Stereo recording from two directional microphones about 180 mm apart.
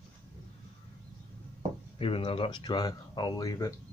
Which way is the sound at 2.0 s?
30° left (ahead or behind).